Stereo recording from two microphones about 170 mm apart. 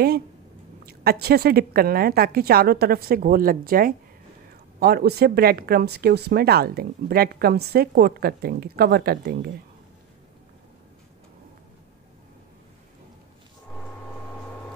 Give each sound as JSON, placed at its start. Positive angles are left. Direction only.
{"t": 0.8, "sound": "speech", "side_deg": -65}